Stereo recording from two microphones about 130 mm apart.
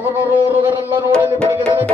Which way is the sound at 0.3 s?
15° right (ahead or behind).